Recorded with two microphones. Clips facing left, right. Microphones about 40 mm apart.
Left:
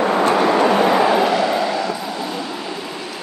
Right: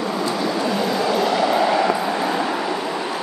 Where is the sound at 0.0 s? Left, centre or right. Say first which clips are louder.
Left 7 dB; left.